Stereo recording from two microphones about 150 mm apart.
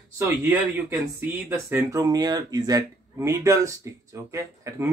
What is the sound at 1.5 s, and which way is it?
Speech, 20° right (ahead or behind).